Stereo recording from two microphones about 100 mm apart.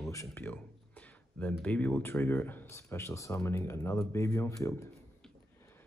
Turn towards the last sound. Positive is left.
turn(degrees=30)  # may be behind; listen again after turning